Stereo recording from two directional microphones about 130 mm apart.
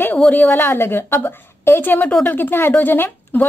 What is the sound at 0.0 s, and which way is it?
A woman's voice, 15° left (ahead or behind).